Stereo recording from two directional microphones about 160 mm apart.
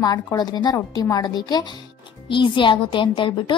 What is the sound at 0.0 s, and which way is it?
A woman's voice, 20° left (ahead or behind).